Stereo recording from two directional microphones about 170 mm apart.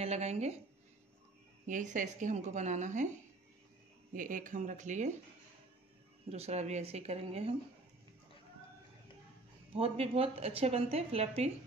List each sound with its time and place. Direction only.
0.0 s a woman's voice: 40° right (ahead or behind)
1.7 s speech: 50° right (ahead or behind)
4.1 s speech: 50° right (ahead or behind)
6.3 s a woman's voice: 40° right (ahead or behind)
9.8 s a woman's voice: 35° right (ahead or behind)